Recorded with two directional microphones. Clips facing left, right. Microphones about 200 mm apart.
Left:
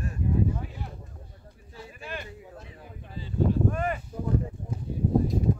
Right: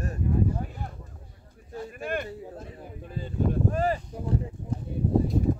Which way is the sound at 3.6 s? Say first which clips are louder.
Right 2 dB; 35° right (ahead or behind).